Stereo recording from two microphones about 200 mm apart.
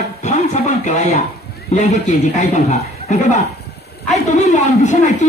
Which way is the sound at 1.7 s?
35° left (ahead or behind).